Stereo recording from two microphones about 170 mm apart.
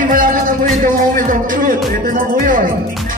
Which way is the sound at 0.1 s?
55° right (ahead or behind).